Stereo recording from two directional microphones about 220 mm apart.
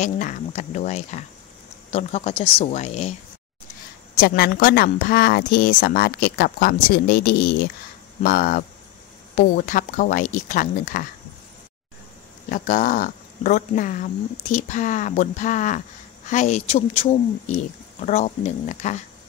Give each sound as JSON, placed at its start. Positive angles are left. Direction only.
{"t": 0.0, "sound": "speech", "side_deg": 35}
{"t": 4.2, "sound": "a woman's voice", "side_deg": 45}
{"t": 12.4, "sound": "speech", "side_deg": 35}